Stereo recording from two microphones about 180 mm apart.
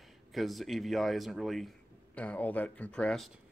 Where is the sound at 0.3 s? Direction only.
Centre (ahead or behind).